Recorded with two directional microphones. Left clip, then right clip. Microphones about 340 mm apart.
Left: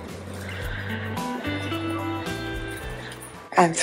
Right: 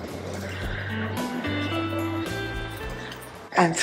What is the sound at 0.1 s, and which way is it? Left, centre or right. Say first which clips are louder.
Music: right 2 dB; centre.